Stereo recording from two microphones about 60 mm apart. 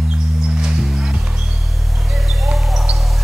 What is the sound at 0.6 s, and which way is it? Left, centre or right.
Music, centre.